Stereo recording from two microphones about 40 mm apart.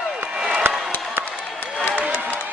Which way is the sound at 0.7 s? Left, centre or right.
Right.